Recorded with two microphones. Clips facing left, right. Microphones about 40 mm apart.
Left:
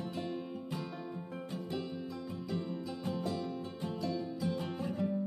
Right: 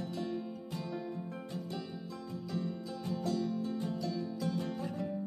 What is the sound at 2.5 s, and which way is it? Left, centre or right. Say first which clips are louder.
Music: even; centre.